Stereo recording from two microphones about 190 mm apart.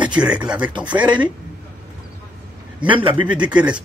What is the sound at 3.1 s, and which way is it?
Speech, 5° right (ahead or behind).